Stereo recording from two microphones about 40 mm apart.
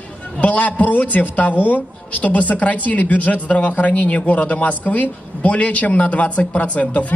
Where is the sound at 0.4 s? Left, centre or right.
Left.